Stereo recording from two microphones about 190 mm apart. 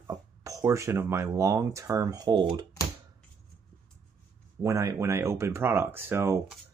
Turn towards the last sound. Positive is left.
turn(degrees=-15)  # may be behind; listen again after turning